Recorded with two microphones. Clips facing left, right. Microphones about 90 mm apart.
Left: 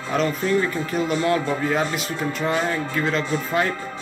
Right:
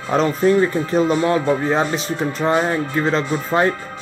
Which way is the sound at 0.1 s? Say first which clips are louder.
Right 6 dB; 35° right (ahead or behind).